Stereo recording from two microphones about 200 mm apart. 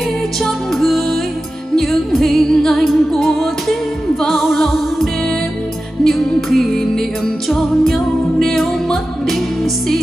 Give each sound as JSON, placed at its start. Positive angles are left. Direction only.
{"t": 0.4, "sound": "music", "side_deg": 0}